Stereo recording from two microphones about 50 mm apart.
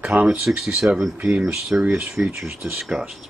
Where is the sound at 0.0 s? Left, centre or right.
Right.